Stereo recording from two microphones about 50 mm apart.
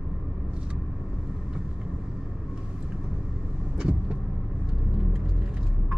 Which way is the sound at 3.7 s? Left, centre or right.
Centre.